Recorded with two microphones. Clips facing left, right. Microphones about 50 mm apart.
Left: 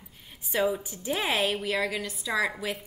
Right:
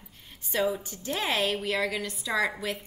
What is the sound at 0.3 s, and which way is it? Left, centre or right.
A woman's voice, centre.